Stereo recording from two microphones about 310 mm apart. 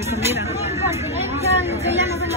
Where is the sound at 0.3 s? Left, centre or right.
Centre.